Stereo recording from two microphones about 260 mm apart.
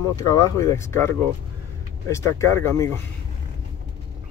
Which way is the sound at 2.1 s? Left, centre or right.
Centre.